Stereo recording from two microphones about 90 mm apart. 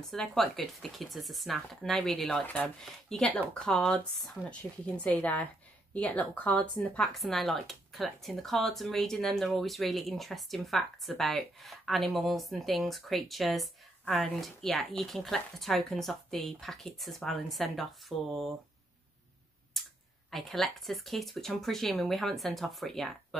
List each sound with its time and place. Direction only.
0.1 s speech: 5° left (ahead or behind)
2.4 s speech: 15° left (ahead or behind)
2.8 s speech: 5° left (ahead or behind)
19.7 s a sound: centre (ahead or behind)
20.2 s speech: centre (ahead or behind)